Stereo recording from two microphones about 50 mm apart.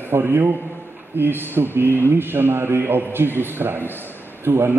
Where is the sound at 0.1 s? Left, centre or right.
Right.